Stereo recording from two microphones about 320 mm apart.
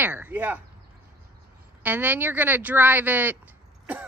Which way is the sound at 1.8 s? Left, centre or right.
Centre.